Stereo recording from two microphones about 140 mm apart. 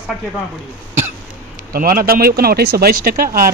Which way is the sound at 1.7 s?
90° right.